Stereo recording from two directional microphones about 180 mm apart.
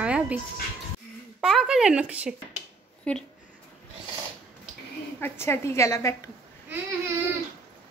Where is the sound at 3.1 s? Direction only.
5° left (ahead or behind).